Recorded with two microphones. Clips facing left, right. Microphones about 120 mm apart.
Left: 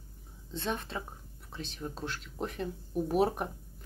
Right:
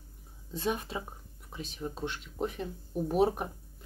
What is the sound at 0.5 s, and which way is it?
Speech, 10° right (ahead or behind).